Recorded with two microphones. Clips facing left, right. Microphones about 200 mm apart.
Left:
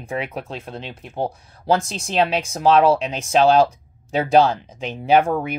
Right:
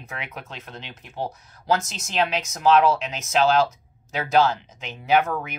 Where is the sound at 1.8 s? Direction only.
30° left (ahead or behind).